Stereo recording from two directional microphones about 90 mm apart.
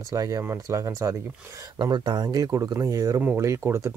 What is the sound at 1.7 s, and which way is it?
Speech, 60° right (ahead or behind).